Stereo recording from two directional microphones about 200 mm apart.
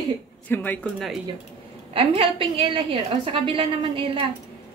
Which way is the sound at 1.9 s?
30° right (ahead or behind).